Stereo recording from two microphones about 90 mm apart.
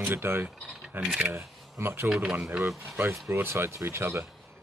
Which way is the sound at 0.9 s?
10° right (ahead or behind).